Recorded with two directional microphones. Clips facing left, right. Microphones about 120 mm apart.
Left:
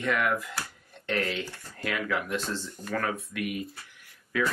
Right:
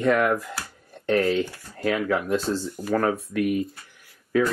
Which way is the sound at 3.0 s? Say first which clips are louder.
Right 7 dB; 40° right (ahead or behind).